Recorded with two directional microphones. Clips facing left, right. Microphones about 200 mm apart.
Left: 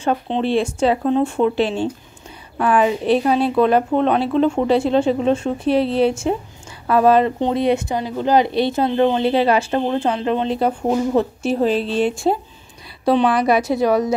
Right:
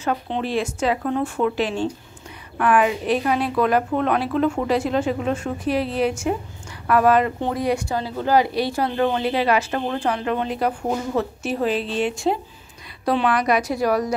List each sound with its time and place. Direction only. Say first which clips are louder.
0.0 s speech: left 5 dB; 30° left (ahead or behind)
13.0 s speech: left 4 dB; 30° left (ahead or behind)